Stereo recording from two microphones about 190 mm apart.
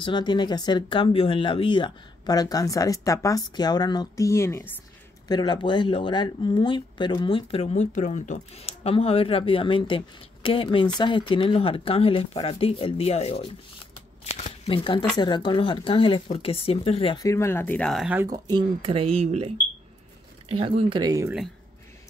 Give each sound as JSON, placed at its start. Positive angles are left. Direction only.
{"t": 0.0, "sound": "speech", "side_deg": 25}
{"t": 14.2, "sound": "shuffling cards", "side_deg": 35}
{"t": 15.1, "sound": "speech", "side_deg": 25}
{"t": 17.2, "sound": "speech", "side_deg": 15}
{"t": 18.2, "sound": "speech", "side_deg": -20}